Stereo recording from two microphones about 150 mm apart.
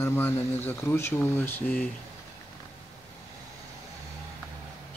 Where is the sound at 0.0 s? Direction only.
15° left (ahead or behind).